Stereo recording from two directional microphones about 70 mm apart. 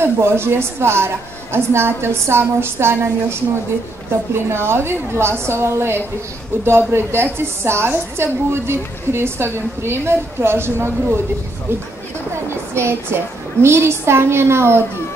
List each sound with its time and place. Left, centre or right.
0.0 s a woman's voice: right
12.7 s a woman's voice: right